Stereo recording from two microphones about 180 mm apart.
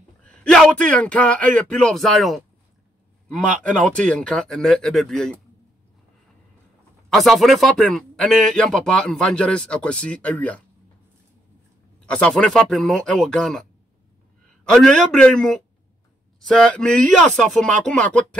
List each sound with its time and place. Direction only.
0.4 s speech: 5° left (ahead or behind)
7.1 s speech: centre (ahead or behind)
12.1 s speech: 5° left (ahead or behind)